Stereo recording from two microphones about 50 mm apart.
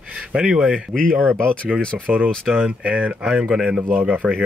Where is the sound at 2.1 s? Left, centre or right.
Right.